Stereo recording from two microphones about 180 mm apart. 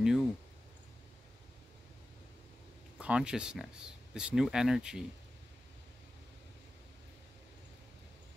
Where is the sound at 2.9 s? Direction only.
5° right (ahead or behind).